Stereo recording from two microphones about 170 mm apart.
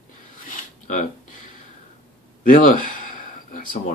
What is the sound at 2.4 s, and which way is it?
Speech, 50° left (ahead or behind).